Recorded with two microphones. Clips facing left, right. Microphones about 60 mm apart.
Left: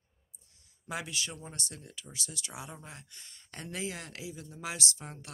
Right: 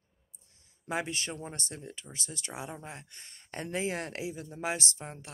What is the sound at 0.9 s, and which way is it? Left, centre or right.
Speech, right.